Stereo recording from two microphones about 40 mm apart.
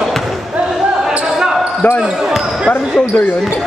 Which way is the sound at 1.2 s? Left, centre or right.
Centre.